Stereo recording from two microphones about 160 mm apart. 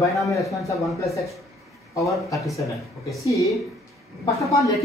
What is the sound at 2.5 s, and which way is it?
Speech, centre (ahead or behind).